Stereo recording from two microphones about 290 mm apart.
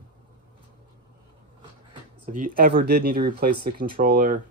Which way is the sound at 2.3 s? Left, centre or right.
Right.